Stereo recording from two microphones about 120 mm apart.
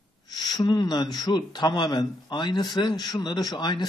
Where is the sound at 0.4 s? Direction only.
35° left (ahead or behind).